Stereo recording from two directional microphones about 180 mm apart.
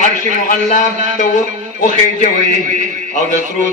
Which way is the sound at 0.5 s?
45° left (ahead or behind).